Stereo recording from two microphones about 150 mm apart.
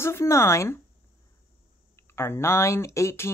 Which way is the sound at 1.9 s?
15° left (ahead or behind).